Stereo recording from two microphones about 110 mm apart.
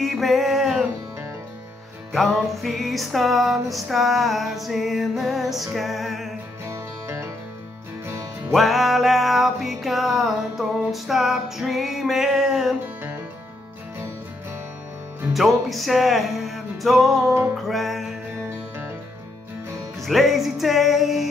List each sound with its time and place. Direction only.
0.0 s music: centre (ahead or behind)
2.1 s music: centre (ahead or behind)
6.6 s music: 25° right (ahead or behind)
8.5 s music: centre (ahead or behind)
15.3 s music: centre (ahead or behind)
20.0 s music: centre (ahead or behind)